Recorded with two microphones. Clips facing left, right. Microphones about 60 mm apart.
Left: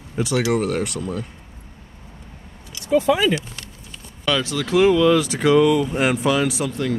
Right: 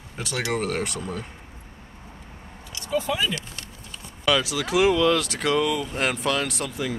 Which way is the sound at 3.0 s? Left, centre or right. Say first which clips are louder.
Left 8 dB; left.